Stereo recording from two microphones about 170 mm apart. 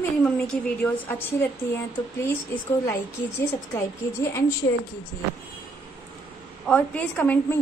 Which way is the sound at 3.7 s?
15° left (ahead or behind).